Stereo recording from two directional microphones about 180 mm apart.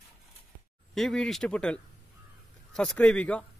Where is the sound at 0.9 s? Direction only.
Centre (ahead or behind).